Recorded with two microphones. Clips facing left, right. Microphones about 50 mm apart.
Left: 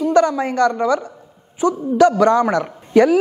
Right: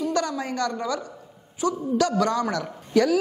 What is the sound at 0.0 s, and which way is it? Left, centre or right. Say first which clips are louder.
Speech: left 10 dB; left.